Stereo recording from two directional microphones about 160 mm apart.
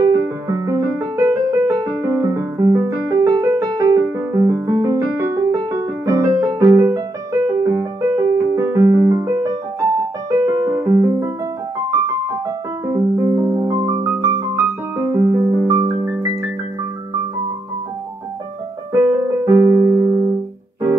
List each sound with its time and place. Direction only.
0.0 s music: 20° right (ahead or behind)
12.8 s piano: 25° right (ahead or behind)
18.9 s keyboard: 15° right (ahead or behind)